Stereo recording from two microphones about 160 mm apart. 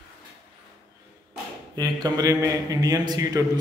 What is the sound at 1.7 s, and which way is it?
A man's voice, 25° right (ahead or behind).